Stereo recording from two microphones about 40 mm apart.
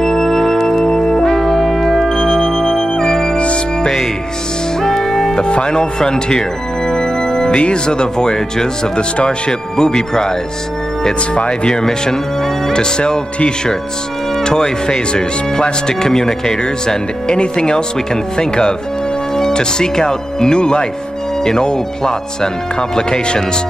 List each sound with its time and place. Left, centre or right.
0.0 s music: centre; by 3.9 s left
4.7 s music: centre
5.4 s organ: left
7.6 s speech: left
11.3 s speech: left